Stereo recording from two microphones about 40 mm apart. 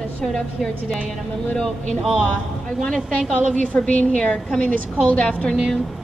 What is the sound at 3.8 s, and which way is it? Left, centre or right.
Speech, left.